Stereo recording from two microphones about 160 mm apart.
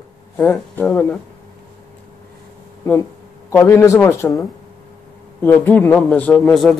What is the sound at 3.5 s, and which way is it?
Speech, 15° left (ahead or behind).